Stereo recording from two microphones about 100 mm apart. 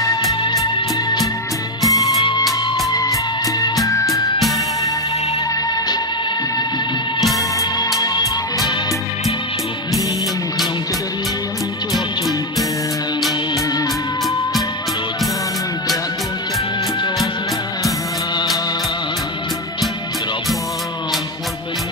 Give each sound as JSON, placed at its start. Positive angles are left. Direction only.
{"t": 1.9, "sound": "music", "side_deg": 35}
{"t": 8.0, "sound": "music", "side_deg": 35}